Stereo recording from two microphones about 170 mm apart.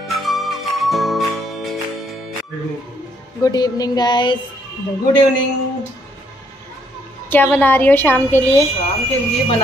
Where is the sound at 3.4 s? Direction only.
25° left (ahead or behind).